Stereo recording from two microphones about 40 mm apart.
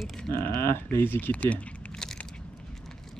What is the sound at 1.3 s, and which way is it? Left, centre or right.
Speech, left.